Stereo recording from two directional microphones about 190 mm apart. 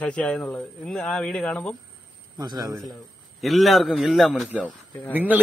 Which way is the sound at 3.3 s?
Centre (ahead or behind).